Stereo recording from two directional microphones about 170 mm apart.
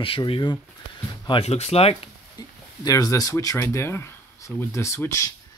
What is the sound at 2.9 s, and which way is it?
Speech, 20° left (ahead or behind).